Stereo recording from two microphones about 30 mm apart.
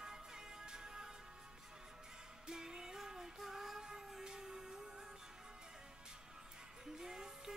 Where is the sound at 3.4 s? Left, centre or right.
Centre.